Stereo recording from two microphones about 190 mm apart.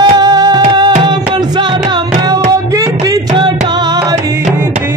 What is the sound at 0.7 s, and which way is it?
Tabla, 20° right (ahead or behind).